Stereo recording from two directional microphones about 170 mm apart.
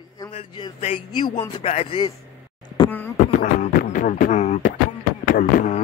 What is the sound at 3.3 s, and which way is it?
Beatboxing, 50° left (ahead or behind).